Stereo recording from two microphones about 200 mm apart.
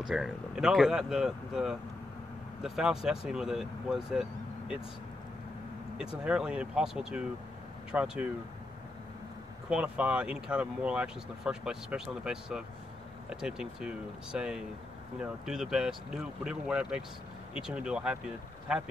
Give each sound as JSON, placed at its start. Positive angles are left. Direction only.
{"t": 0.1, "sound": "speech", "side_deg": -5}
{"t": 6.2, "sound": "speech", "side_deg": -5}
{"t": 9.7, "sound": "speech", "side_deg": -5}